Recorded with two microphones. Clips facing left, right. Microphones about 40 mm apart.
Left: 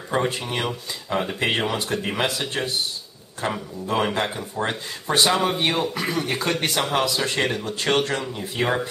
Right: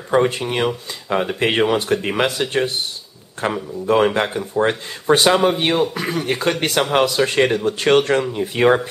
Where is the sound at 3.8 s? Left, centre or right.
Right.